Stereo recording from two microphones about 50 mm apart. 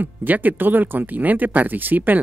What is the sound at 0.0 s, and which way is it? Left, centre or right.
Speech, right.